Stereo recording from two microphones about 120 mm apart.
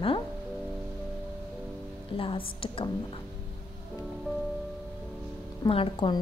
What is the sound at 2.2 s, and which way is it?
Speech, 50° left (ahead or behind).